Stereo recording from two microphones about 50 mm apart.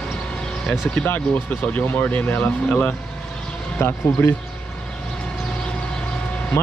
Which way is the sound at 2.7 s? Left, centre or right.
Left.